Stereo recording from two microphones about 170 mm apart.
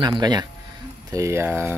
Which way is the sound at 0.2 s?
25° right (ahead or behind).